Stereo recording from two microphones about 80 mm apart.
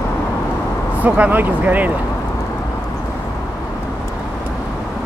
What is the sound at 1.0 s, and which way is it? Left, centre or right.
Speech, centre.